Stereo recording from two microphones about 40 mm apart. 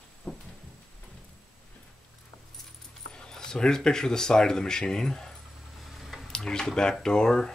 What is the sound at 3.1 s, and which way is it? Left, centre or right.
Speech, left.